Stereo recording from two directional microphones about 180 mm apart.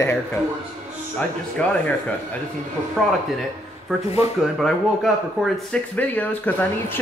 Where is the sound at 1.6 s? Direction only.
5° left (ahead or behind).